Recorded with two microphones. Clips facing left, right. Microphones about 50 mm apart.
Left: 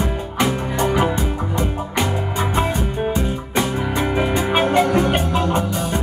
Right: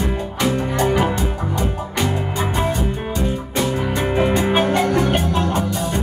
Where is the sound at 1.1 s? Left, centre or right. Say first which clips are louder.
Even; left.